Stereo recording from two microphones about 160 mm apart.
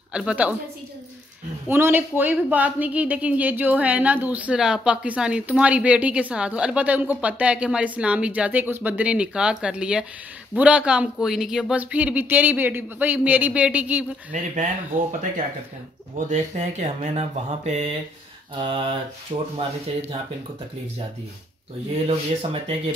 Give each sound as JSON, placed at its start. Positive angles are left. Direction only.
{"t": 0.1, "sound": "a woman's voice", "side_deg": -5}
{"t": 1.7, "sound": "a woman's voice", "side_deg": -15}
{"t": 14.3, "sound": "mantra", "side_deg": -50}
{"t": 18.6, "sound": "speech", "side_deg": -30}
{"t": 22.0, "sound": "speech", "side_deg": -35}